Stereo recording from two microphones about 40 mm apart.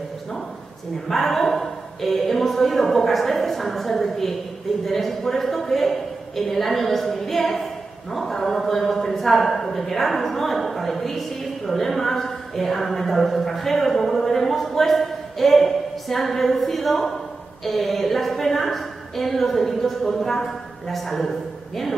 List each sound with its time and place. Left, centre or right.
1.0 s a man's voice: centre